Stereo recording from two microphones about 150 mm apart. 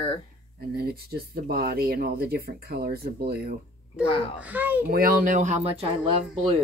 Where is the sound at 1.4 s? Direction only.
75° right (ahead or behind).